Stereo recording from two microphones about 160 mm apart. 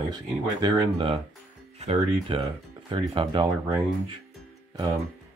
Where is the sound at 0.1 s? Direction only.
25° right (ahead or behind).